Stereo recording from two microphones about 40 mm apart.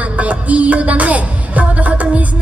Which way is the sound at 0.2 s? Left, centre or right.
Right.